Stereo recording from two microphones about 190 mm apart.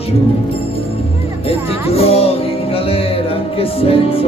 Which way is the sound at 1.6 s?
30° left (ahead or behind).